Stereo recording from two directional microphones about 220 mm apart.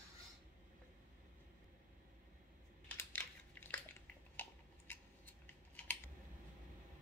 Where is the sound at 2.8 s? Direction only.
10° left (ahead or behind).